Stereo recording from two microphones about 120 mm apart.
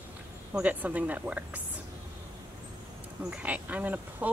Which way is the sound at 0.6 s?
10° right (ahead or behind).